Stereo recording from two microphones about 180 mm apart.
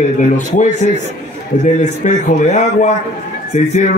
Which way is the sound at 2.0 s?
45° left (ahead or behind).